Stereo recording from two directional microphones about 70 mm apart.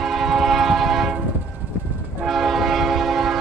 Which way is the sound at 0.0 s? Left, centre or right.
Centre.